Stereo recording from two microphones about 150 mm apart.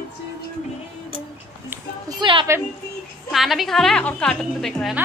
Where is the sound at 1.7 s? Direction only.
25° right (ahead or behind).